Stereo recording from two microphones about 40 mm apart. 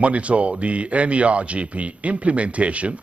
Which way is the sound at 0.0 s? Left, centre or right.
Right.